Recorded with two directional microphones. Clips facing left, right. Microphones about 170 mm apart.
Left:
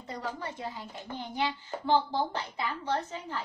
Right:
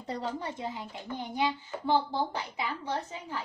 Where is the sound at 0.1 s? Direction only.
25° right (ahead or behind).